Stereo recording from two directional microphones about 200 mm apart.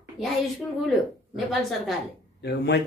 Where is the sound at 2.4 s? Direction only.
60° left (ahead or behind).